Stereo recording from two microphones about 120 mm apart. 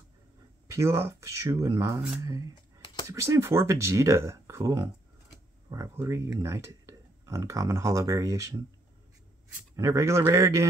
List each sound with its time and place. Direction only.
0.7 s speech: 20° right (ahead or behind)
9.8 s speech: 25° right (ahead or behind)